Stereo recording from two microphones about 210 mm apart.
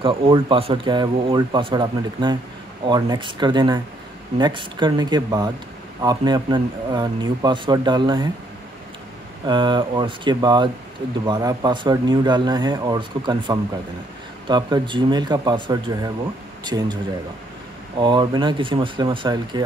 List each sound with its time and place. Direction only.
0.0 s speech: 25° right (ahead or behind)
9.5 s speech: 20° right (ahead or behind)
18.0 s speech: 20° right (ahead or behind)